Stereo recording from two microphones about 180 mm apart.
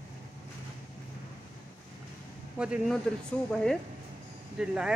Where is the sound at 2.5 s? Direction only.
5° right (ahead or behind).